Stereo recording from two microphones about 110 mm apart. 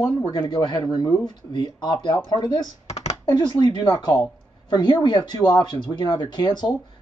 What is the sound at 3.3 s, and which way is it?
Speech, 40° left (ahead or behind).